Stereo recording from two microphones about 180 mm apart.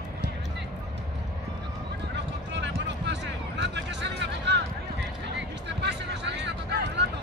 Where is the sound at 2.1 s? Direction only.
75° right (ahead or behind).